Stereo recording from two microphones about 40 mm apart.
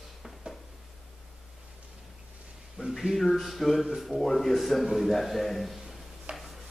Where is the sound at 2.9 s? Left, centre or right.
Centre.